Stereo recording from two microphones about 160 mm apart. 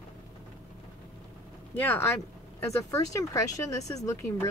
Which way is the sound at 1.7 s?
10° left (ahead or behind).